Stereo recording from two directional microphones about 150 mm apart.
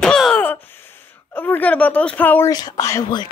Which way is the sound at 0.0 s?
5° left (ahead or behind).